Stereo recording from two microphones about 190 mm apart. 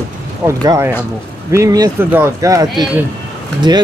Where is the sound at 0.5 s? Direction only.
15° right (ahead or behind).